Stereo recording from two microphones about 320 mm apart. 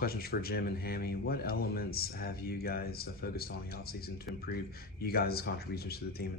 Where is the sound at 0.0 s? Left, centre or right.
Left.